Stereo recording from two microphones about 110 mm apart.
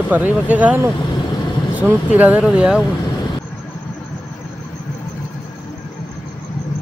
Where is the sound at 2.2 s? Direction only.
15° right (ahead or behind).